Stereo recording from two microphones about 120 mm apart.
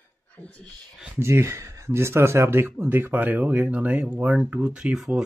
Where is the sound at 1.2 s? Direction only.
20° right (ahead or behind).